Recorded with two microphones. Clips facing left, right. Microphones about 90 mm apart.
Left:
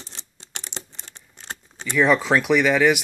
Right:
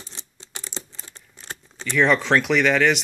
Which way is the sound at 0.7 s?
70° left (ahead or behind).